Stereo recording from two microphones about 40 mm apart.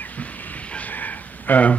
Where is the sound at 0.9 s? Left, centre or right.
Left.